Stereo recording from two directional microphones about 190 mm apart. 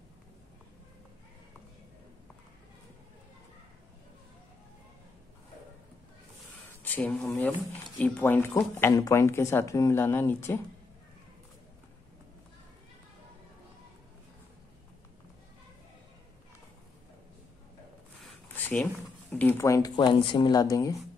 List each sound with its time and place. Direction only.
6.8 s speech: 10° left (ahead or behind)
18.2 s a sound: 10° left (ahead or behind)
19.3 s speech: 10° left (ahead or behind)